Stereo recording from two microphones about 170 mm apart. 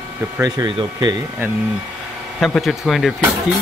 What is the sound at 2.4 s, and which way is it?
Speech, centre (ahead or behind).